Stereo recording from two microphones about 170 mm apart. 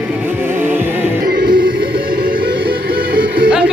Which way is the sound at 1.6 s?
60° right (ahead or behind).